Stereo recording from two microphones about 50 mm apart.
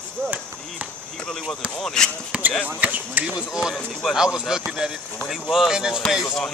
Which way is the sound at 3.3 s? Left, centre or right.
Centre.